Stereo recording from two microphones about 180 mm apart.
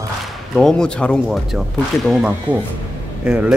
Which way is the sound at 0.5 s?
5° left (ahead or behind).